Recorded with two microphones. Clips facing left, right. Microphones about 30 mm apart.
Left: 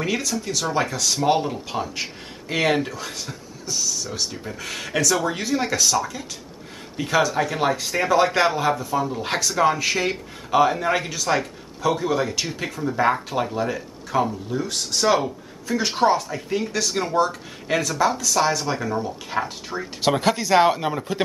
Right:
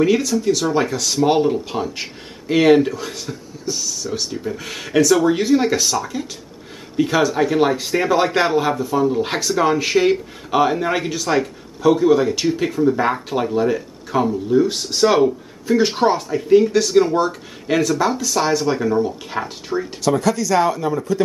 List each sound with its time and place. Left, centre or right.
0.0 s speech: centre
20.0 s speech: left